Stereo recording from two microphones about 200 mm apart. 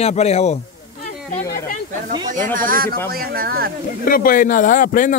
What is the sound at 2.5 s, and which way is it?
Speech, 45° right (ahead or behind).